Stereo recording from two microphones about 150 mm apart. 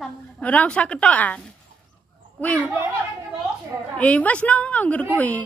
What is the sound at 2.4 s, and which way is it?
Speech, 10° left (ahead or behind).